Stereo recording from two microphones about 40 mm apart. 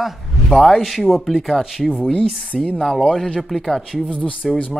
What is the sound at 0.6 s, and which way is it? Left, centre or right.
Speech, centre.